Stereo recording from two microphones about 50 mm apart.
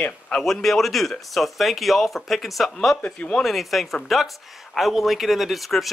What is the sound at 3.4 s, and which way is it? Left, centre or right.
Speech, centre.